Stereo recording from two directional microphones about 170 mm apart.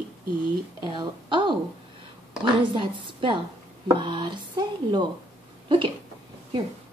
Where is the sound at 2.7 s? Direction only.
30° right (ahead or behind).